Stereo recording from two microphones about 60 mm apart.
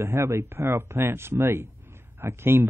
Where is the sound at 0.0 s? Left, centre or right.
Right.